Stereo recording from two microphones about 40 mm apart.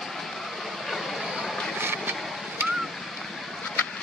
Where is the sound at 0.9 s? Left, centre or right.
Centre.